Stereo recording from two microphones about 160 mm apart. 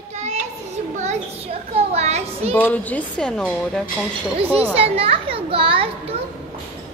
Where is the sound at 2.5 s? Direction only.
10° left (ahead or behind).